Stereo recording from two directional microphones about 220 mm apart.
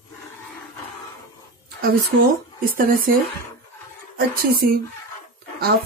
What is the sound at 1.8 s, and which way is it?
A woman's voice, 40° right (ahead or behind).